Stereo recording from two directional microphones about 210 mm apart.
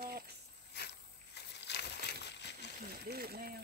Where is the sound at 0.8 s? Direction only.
50° left (ahead or behind).